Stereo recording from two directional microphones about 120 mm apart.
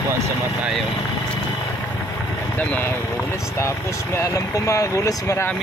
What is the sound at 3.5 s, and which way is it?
Speech, 25° left (ahead or behind).